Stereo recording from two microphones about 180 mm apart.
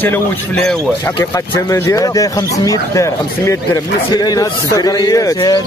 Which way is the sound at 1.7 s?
15° left (ahead or behind).